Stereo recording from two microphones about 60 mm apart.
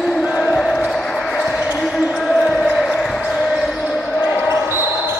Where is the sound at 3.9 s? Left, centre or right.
Centre.